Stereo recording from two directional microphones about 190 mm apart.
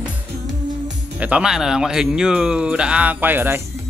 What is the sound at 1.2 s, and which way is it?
Speech, 5° right (ahead or behind).